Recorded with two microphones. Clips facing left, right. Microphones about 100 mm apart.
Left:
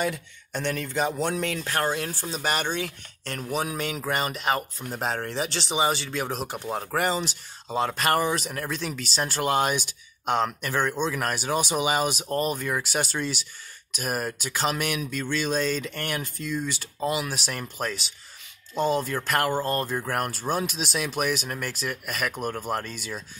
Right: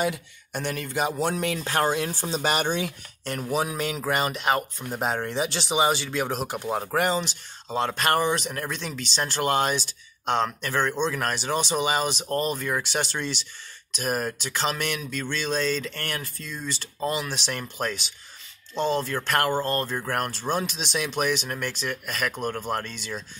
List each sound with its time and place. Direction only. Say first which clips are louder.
0.0 s speech: right 1 dB; 10° right (ahead or behind)